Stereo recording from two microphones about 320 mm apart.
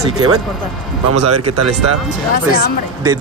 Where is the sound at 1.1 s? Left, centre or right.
Right.